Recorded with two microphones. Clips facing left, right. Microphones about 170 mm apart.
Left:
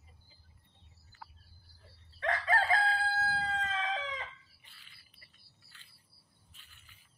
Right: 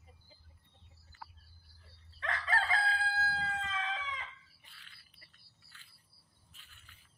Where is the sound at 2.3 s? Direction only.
45° left (ahead or behind).